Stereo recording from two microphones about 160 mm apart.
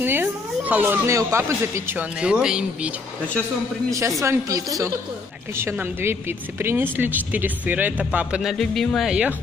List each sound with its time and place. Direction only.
0.0 s speech: 10° right (ahead or behind)
4.2 s speech: 20° right (ahead or behind); by 9.3 s 5° right (ahead or behind)